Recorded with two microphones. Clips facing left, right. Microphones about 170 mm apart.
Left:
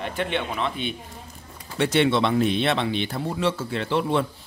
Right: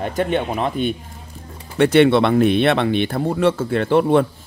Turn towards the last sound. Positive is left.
turn(degrees=-55)  # may be behind; listen again after turning